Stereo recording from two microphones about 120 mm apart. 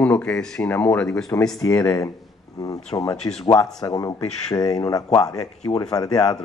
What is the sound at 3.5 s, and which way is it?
Speech, 5° left (ahead or behind).